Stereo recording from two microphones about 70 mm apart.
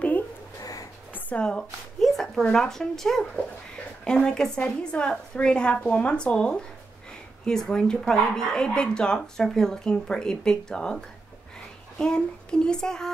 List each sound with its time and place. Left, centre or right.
0.6 s a sound: left
1.1 s speech: centre
12.0 s speech: centre